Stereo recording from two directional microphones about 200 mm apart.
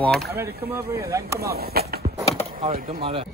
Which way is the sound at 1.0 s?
15° right (ahead or behind).